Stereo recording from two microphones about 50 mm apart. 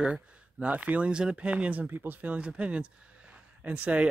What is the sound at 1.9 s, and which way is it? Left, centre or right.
Speech, right.